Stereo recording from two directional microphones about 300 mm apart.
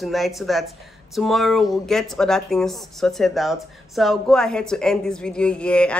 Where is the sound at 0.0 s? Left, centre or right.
Centre.